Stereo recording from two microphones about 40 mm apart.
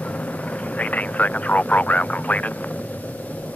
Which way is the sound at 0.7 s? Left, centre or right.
Left.